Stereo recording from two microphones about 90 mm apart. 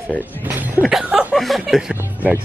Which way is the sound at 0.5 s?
20° right (ahead or behind).